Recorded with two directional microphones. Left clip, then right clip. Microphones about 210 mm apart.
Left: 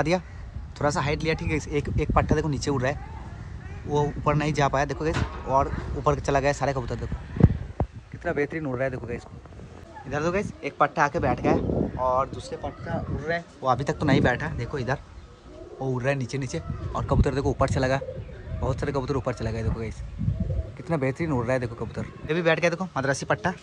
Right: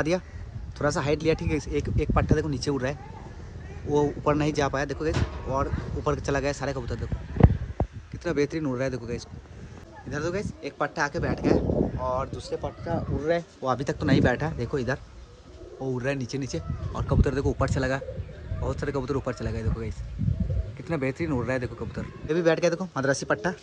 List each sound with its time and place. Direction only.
0.1 s speech: 10° right (ahead or behind)
10.0 s speech: centre (ahead or behind)
12.4 s speech: 20° right (ahead or behind)
13.6 s speech: 15° right (ahead or behind)
14.3 s speech: 20° right (ahead or behind)